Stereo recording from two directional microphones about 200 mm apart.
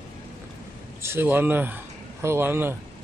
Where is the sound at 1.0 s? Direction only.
10° right (ahead or behind).